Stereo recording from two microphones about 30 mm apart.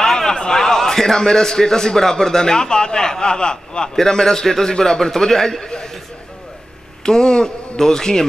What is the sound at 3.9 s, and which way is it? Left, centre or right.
A man's voice, centre.